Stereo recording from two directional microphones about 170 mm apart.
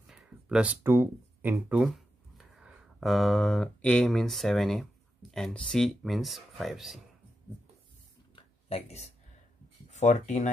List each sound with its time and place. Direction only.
0.0 s speech: 5° right (ahead or behind)
8.4 s a sound: 35° left (ahead or behind)
9.8 s speech: 45° left (ahead or behind)